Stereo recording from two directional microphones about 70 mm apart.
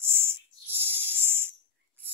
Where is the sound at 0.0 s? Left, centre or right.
Right.